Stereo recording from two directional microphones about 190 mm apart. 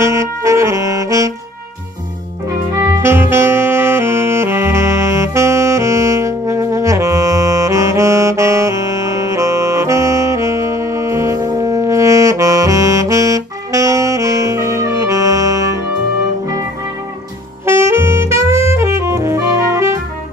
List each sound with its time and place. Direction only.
0.0 s saxophone: 15° right (ahead or behind)
2.9 s saxophone: 10° right (ahead or behind)
17.6 s saxophone: 15° right (ahead or behind)